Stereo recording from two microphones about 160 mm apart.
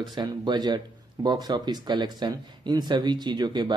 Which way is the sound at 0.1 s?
25° right (ahead or behind).